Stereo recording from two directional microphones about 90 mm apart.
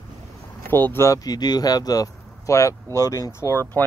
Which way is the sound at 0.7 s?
25° left (ahead or behind).